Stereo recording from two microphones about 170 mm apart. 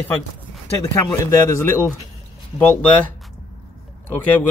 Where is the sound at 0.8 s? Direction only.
15° left (ahead or behind).